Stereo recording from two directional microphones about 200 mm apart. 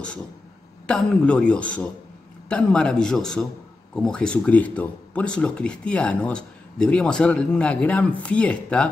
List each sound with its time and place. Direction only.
0.8 s speech: 5° left (ahead or behind)